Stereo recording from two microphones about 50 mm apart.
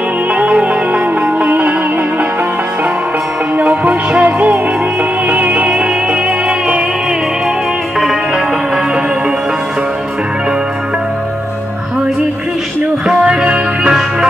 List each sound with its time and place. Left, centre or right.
0.3 s music: right
3.5 s music: right
13.2 s music: centre